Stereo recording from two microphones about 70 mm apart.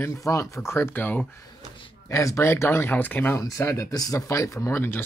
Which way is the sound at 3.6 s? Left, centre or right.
Left.